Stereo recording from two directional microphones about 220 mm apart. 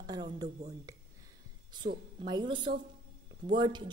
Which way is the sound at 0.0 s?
15° right (ahead or behind).